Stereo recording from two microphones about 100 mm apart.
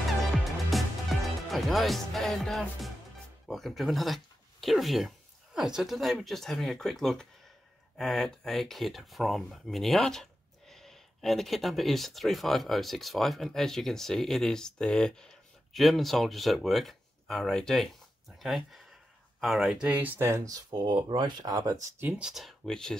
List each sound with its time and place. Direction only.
0.7 s music: centre (ahead or behind)
3.4 s speech: centre (ahead or behind); by 21.8 s 35° right (ahead or behind)
22.2 s speech: centre (ahead or behind)